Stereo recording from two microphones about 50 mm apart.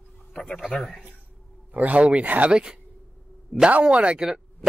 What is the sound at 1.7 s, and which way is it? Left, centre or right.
Speech, right.